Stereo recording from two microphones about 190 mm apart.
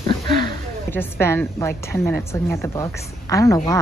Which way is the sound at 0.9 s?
10° left (ahead or behind).